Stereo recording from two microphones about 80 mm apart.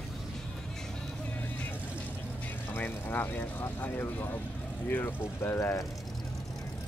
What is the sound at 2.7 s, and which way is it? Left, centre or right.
Speech, left.